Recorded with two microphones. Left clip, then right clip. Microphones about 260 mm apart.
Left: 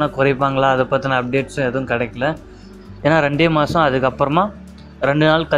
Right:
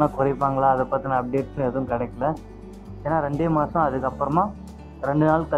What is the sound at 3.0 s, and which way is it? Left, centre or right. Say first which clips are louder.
Speech: left 9 dB; left.